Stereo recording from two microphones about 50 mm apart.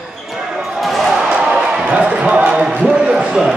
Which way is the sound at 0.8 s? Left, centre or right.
Centre.